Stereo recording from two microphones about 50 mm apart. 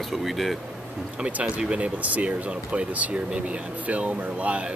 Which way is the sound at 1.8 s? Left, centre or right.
Right.